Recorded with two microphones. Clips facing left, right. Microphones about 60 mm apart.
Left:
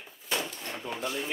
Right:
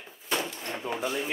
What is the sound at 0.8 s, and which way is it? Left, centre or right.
Speech, centre.